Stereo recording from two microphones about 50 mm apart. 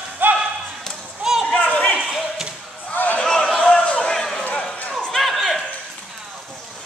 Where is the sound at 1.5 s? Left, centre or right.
Left.